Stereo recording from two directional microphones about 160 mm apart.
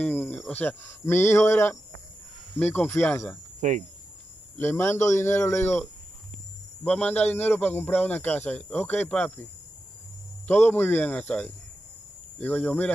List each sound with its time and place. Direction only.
0.0 s speech: 10° left (ahead or behind)
3.6 s speech: 50° right (ahead or behind)
4.6 s speech: 15° left (ahead or behind)
10.4 s speech: 15° left (ahead or behind)